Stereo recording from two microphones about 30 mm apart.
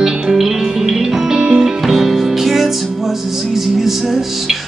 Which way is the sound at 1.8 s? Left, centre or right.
Centre.